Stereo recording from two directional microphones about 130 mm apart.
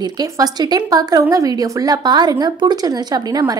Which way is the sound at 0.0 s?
30° right (ahead or behind).